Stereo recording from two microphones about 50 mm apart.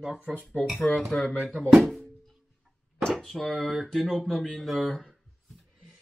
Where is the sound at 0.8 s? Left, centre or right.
Left.